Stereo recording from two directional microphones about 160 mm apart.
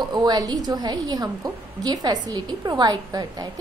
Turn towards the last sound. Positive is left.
turn(degrees=-25)  # may be behind; listen again after turning